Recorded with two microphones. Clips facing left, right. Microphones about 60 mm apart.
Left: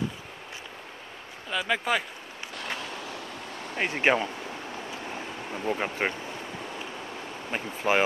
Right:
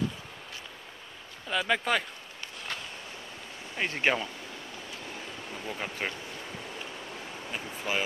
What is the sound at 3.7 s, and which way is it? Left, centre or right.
Speech, left.